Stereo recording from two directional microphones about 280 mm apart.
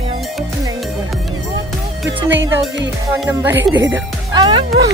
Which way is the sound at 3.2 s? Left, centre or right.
Centre.